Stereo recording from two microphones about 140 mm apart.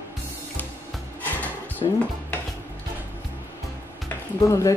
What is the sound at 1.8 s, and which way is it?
Dishes, 35° left (ahead or behind).